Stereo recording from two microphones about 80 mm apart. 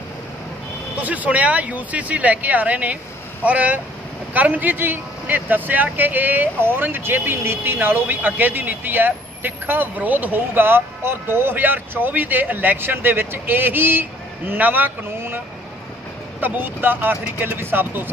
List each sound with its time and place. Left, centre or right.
0.9 s speech: centre